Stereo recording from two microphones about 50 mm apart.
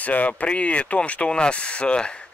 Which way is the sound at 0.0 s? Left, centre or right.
Left.